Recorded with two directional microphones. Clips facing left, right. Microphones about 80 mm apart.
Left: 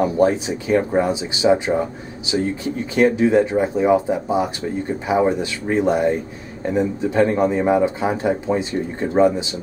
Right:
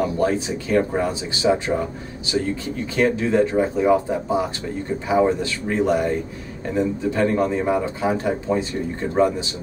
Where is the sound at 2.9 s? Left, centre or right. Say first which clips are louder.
Left 4 dB; centre.